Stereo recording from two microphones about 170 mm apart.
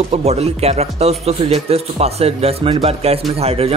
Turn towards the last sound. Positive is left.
turn(degrees=-35)  # may be behind; listen again after turning